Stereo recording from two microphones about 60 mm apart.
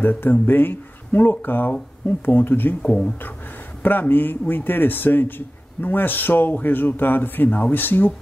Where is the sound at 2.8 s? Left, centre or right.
Centre.